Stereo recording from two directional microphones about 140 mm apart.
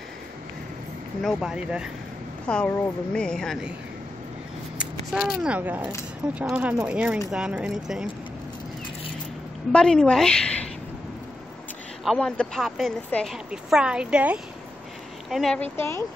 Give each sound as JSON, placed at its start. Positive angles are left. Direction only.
{"t": 1.2, "sound": "speech", "side_deg": -5}
{"t": 2.4, "sound": "a woman's voice", "side_deg": 10}
{"t": 4.7, "sound": "speech", "side_deg": -5}
{"t": 9.7, "sound": "a woman's voice", "side_deg": 5}
{"t": 12.0, "sound": "speech", "side_deg": 5}
{"t": 15.7, "sound": "a woman's voice", "side_deg": 20}